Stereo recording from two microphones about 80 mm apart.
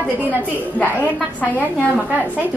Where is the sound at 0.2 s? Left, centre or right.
Right.